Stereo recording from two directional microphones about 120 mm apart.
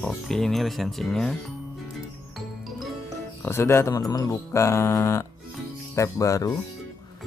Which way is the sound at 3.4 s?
20° left (ahead or behind).